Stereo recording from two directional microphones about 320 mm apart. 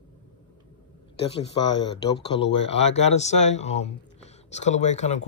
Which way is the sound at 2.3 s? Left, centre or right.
Centre.